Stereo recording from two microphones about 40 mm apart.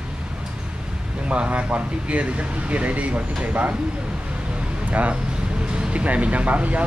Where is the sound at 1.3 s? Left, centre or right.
Right.